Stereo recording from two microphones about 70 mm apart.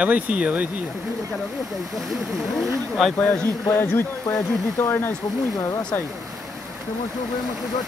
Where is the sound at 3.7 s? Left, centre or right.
Left.